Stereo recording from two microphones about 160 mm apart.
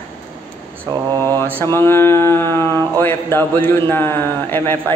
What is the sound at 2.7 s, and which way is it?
Speech, 25° right (ahead or behind).